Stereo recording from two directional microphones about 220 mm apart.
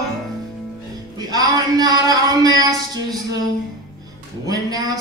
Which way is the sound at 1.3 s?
15° right (ahead or behind).